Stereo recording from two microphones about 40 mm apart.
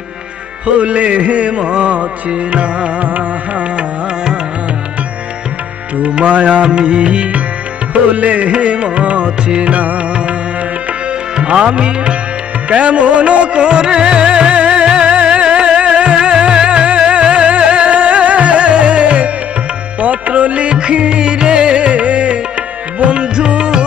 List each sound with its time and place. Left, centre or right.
0.7 s music: right
6.0 s music: right